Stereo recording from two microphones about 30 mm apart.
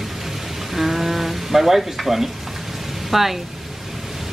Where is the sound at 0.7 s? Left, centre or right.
Centre.